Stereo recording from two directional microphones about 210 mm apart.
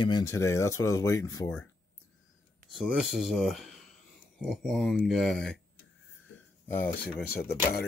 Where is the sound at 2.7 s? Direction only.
Centre (ahead or behind).